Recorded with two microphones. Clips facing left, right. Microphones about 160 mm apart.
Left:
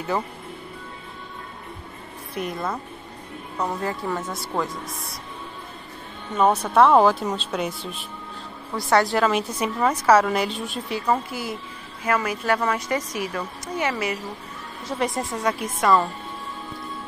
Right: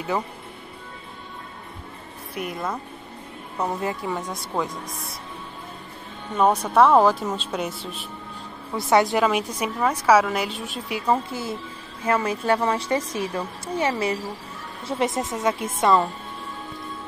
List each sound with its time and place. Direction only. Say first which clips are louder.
2.3 s a woman's voice: left 1 dB; 10° right (ahead or behind)
6.3 s a woman's voice: even; 10° right (ahead or behind)
8.7 s a woman's voice: right 1 dB; 20° right (ahead or behind)
11.2 s speech: right 1 dB; 25° right (ahead or behind)